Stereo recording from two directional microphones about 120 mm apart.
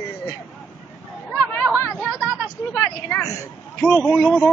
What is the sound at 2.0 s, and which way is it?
A man's voice, 5° left (ahead or behind).